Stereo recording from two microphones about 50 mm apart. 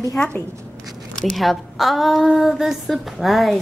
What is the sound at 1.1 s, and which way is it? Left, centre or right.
A woman's voice, centre.